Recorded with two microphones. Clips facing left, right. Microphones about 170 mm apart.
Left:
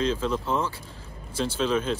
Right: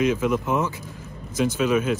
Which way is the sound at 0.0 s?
10° right (ahead or behind).